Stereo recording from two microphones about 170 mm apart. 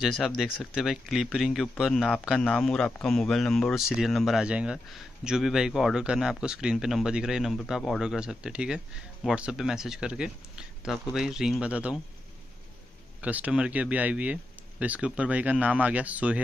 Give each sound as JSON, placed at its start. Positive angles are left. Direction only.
{"t": 0.0, "sound": "speech", "side_deg": 0}
{"t": 13.2, "sound": "speech", "side_deg": -10}